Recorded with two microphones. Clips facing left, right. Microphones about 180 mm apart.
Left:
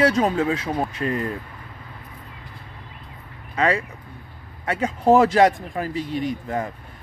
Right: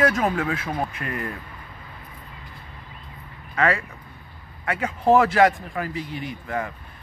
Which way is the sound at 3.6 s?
20° left (ahead or behind).